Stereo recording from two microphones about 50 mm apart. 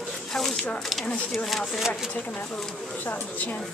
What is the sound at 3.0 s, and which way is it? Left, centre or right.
Speech, left.